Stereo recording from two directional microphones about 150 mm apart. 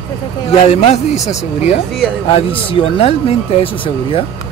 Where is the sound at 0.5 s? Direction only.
45° left (ahead or behind).